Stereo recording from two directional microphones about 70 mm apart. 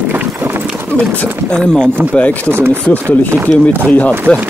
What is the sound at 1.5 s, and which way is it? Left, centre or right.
Speech, centre.